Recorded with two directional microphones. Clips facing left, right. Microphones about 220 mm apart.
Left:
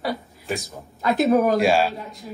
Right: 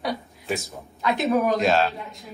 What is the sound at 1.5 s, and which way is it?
Speech, 10° left (ahead or behind).